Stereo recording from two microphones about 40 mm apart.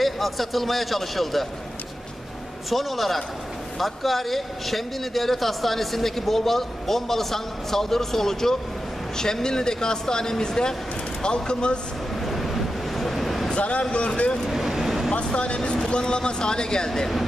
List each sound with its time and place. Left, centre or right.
0.0 s a man's voice: centre
2.7 s a man's voice: centre; by 11.8 s left
12.3 s a sound: centre
13.6 s speech: left
14.5 s vehicle: centre
15.2 s speech: left